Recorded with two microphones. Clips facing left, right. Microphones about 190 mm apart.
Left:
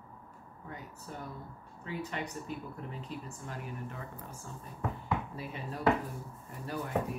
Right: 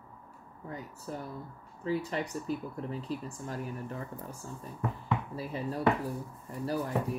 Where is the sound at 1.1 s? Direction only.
35° right (ahead or behind).